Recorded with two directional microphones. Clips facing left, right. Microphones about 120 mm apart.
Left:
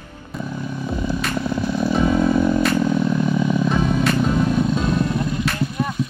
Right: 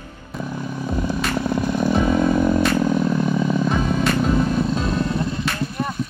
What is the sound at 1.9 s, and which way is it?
Chainsaw, 5° right (ahead or behind).